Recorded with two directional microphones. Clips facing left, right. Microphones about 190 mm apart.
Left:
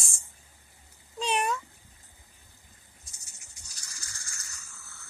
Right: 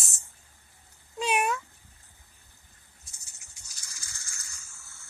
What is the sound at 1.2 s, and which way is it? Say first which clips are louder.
Cat: right 1 dB; 5° right (ahead or behind).